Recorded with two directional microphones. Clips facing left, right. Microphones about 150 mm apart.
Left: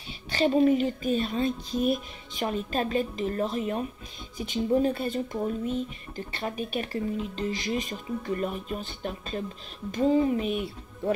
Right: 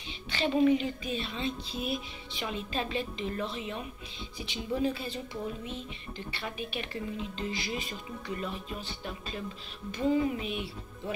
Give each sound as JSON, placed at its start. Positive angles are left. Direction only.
{"t": 0.3, "sound": "speech", "side_deg": 40}